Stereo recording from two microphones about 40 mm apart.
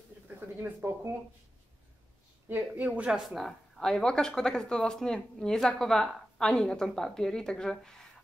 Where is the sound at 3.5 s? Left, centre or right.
Centre.